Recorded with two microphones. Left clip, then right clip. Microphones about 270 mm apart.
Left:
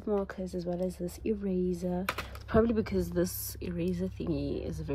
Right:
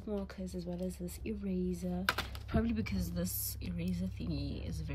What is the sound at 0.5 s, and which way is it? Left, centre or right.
Speech, centre.